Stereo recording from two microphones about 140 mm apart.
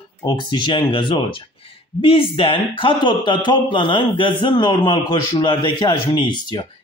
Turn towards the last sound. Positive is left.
turn(degrees=35)  # may be behind; listen again after turning